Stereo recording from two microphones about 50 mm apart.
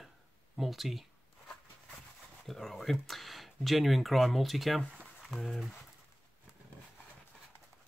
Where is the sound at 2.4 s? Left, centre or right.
Centre.